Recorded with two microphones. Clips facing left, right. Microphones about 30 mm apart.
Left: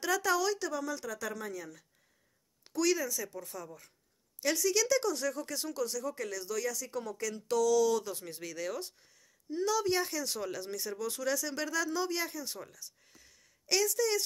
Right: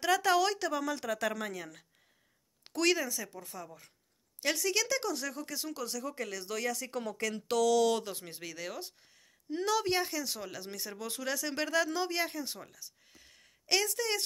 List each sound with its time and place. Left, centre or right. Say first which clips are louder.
0.0 s speech: right 2 dB; right
0.4 s speech: right 2 dB; right
1.5 s speech: even; right
3.1 s speech: left 2 dB; centre
6.4 s speech: right 1 dB; right
6.9 s speech: right 1 dB; right
7.3 s speech: even; right
8.0 s speech: left 1 dB; right
9.5 s speech: even; right
10.0 s speech: left 1 dB; centre; by 12.5 s right
12.5 s speech: left 2 dB; centre
13.3 s a sound: right 1 dB; right